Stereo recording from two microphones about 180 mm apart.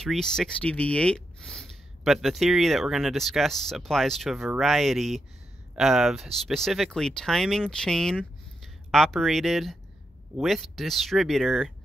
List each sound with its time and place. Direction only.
0.0 s speech: centre (ahead or behind)